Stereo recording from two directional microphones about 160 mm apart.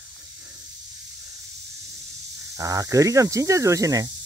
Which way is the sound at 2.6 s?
20° right (ahead or behind).